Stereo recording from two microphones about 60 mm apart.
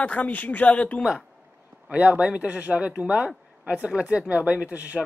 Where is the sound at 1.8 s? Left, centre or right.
Right.